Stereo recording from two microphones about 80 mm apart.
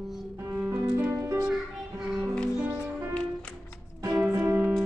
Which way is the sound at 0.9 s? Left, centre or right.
Right.